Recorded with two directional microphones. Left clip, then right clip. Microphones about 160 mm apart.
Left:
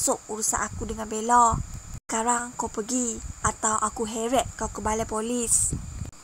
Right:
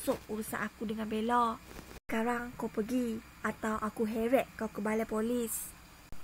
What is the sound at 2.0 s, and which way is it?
Speech, 45° left (ahead or behind).